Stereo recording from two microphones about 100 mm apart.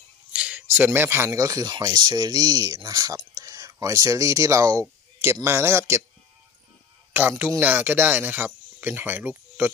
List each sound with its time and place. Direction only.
0.3 s speech: 10° right (ahead or behind); by 6.0 s 30° right (ahead or behind)
7.2 s speech: 20° right (ahead or behind)